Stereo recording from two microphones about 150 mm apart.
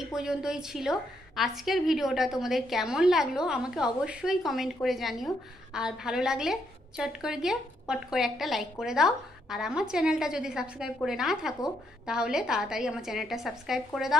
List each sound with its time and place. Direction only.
0.1 s a woman's voice: 5° right (ahead or behind)